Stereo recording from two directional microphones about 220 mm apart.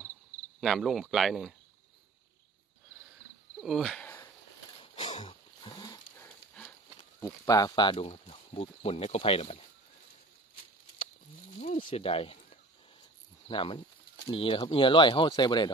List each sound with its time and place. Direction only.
0.6 s speech: centre (ahead or behind)
3.6 s speech: centre (ahead or behind)
4.7 s dog: 25° left (ahead or behind)
6.2 s horse: 5° left (ahead or behind)
7.2 s speech: 15° left (ahead or behind)
11.5 s a sound: 30° left (ahead or behind)
13.5 s speech: 25° left (ahead or behind)